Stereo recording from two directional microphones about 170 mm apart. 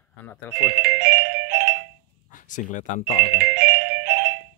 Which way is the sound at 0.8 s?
70° right (ahead or behind).